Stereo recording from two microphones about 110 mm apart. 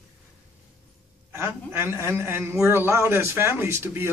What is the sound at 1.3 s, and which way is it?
A man's voice, 25° right (ahead or behind).